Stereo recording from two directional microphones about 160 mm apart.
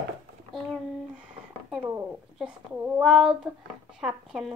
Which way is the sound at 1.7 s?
5° right (ahead or behind).